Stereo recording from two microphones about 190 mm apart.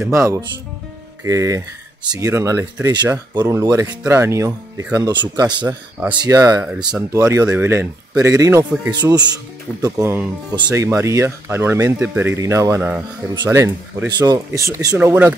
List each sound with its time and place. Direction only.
0.0 s speech: 15° right (ahead or behind)